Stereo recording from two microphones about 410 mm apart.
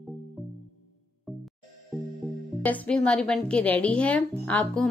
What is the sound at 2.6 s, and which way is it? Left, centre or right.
A woman's voice, centre.